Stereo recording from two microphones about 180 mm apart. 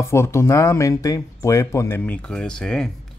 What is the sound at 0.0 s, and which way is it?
Speech, 15° left (ahead or behind).